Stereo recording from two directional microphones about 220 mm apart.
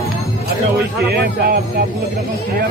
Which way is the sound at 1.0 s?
45° right (ahead or behind).